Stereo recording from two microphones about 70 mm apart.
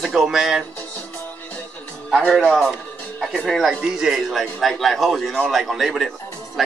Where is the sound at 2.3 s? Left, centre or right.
Centre.